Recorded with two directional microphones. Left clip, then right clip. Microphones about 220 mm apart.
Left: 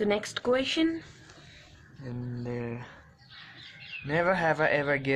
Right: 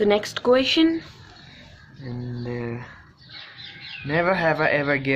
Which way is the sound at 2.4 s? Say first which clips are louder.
Right 5 dB; 20° left (ahead or behind).